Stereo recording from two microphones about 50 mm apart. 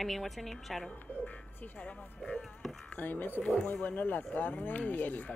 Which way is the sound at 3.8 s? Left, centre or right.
Left.